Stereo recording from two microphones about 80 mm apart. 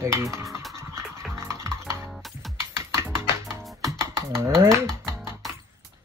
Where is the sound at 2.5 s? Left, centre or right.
Right.